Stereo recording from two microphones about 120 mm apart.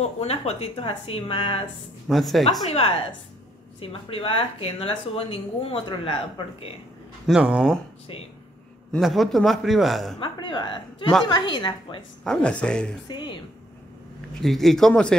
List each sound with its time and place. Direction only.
0.2 s speech: 60° left (ahead or behind)
2.0 s a man's voice: centre (ahead or behind)
2.6 s speech: 55° left (ahead or behind)
7.2 s speech: 10° right (ahead or behind)
8.9 s a man's voice: centre (ahead or behind)
10.1 s speech: 40° left (ahead or behind)
12.3 s speech: 10° left (ahead or behind)
13.1 s speech: 40° left (ahead or behind)
14.4 s a man's voice: centre (ahead or behind)